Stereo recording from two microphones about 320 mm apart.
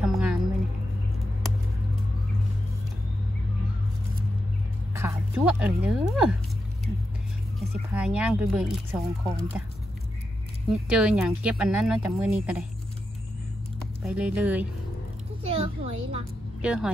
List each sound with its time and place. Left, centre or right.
0.0 s music: centre
4.9 s speech: centre
7.5 s speech: centre
10.7 s speech: centre
14.0 s speech: centre
15.4 s a child's voice: centre
16.6 s speech: centre